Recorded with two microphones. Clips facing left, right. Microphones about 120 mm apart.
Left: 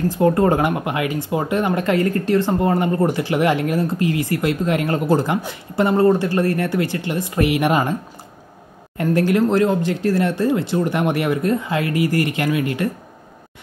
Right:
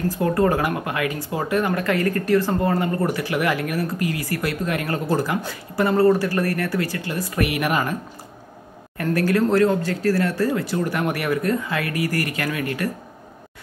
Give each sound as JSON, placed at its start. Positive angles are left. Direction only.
{"t": 0.1, "sound": "speech", "side_deg": 25}
{"t": 8.9, "sound": "speech", "side_deg": 20}